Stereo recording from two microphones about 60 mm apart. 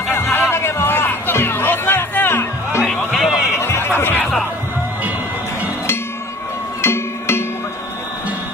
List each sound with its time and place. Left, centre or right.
0.1 s music: left
3.1 s a sound: centre
3.5 s music: left
6.8 s music: left